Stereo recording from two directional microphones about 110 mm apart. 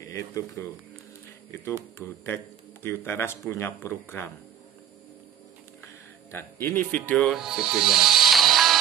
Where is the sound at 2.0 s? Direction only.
20° left (ahead or behind).